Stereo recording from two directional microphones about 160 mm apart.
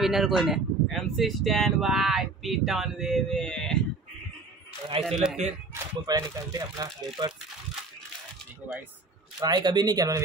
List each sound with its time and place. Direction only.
0.0 s speech: centre (ahead or behind)
5.0 s speech: 5° right (ahead or behind)
6.0 s speech: 25° right (ahead or behind)
9.4 s speech: 25° right (ahead or behind)